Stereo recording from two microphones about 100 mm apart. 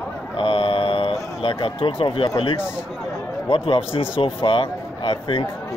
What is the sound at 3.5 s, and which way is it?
A man's voice, 65° left (ahead or behind).